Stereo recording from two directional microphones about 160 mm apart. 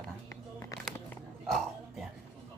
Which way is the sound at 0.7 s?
20° left (ahead or behind).